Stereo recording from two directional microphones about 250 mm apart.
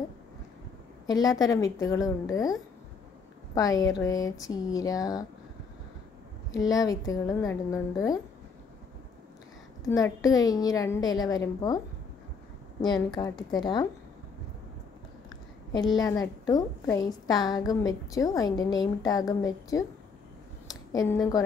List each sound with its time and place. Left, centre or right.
1.0 s a woman's voice: centre
3.5 s a woman's voice: centre
6.5 s a woman's voice: centre
9.8 s a woman's voice: centre
12.8 s a woman's voice: centre
16.0 s a woman's voice: centre
20.9 s a woman's voice: centre